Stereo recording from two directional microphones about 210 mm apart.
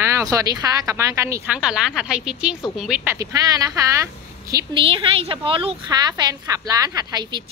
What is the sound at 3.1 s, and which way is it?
A woman's voice, 15° right (ahead or behind).